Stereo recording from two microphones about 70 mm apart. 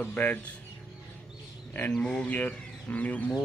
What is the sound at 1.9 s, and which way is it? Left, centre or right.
Speech, centre.